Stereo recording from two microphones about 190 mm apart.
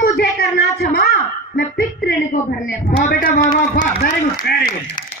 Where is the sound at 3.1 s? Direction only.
50° left (ahead or behind).